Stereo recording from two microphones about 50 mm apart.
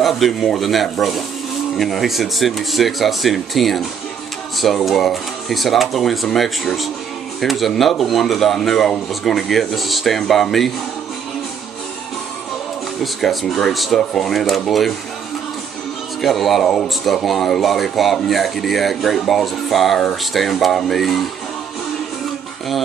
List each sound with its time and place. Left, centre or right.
0.0 s speech: centre
13.0 s speech: centre
16.2 s speech: centre